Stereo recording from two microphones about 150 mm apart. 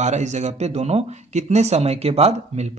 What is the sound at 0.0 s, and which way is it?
Speech, 50° right (ahead or behind).